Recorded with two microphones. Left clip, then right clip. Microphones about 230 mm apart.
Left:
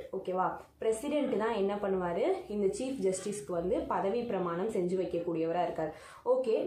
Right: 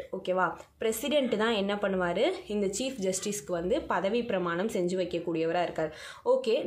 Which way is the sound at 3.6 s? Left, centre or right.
Right.